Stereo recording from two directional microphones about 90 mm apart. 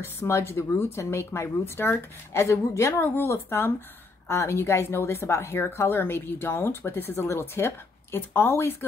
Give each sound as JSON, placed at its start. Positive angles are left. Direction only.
{"t": 0.0, "sound": "a woman's voice", "side_deg": 30}